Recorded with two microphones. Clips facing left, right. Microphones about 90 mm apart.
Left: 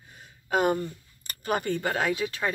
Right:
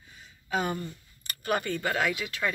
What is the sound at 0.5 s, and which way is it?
Speech, 50° left (ahead or behind).